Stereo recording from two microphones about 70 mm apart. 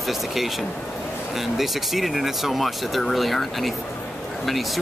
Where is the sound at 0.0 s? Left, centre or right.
Centre.